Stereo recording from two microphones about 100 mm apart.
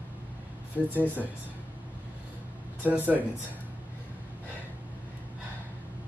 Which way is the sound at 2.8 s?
15° right (ahead or behind).